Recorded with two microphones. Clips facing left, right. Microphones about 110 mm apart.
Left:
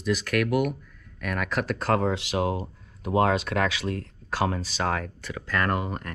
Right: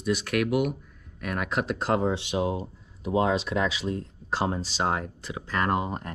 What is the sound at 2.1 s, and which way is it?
Speech, 80° left.